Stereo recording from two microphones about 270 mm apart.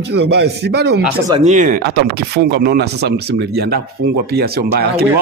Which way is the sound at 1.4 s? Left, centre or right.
Right.